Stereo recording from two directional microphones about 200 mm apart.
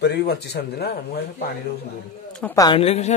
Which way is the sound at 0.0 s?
55° left (ahead or behind).